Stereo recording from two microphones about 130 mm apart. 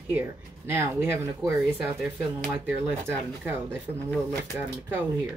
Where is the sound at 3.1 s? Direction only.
15° right (ahead or behind).